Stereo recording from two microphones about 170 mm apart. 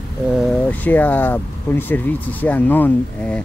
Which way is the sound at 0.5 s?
10° left (ahead or behind).